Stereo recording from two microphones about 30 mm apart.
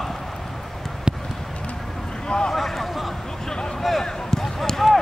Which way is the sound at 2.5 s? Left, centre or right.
Centre.